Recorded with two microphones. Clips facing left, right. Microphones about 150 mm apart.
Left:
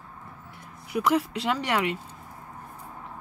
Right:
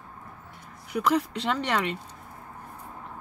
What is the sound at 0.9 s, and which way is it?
Speech, 5° left (ahead or behind).